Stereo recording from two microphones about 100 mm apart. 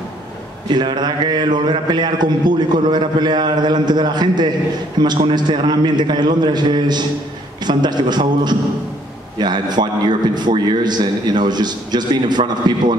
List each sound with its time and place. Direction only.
0.7 s a man's voice: 45° right (ahead or behind)